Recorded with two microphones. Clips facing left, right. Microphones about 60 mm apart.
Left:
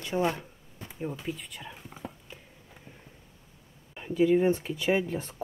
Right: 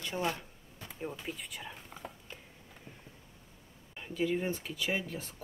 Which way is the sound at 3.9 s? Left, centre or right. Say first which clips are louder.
Left 9 dB; centre.